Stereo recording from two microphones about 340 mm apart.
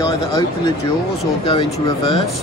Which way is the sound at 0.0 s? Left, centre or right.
Centre.